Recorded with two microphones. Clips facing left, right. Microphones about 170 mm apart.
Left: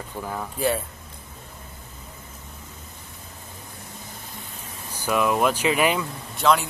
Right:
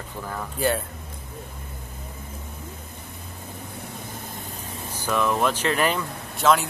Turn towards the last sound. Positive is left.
turn(degrees=0)  # may be behind; listen again after turning